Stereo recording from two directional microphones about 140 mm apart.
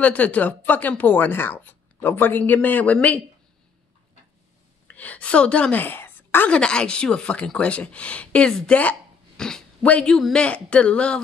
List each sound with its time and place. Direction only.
0.0 s a woman's voice: 10° left (ahead or behind)
4.8 s a woman's voice: 10° left (ahead or behind)